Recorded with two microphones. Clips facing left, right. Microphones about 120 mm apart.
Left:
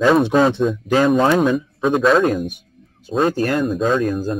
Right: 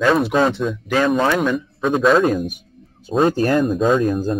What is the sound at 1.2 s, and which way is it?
Speech, 25° left (ahead or behind).